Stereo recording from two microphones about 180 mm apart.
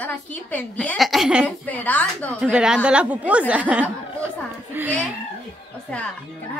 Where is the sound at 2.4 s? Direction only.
5° right (ahead or behind).